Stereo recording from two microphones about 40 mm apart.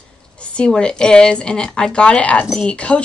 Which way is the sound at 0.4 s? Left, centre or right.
Left.